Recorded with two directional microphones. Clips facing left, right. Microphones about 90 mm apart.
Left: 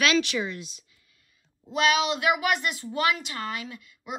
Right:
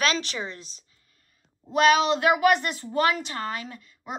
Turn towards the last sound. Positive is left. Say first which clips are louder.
# right 1 dB
turn(degrees=-35)  # may be behind; listen again after turning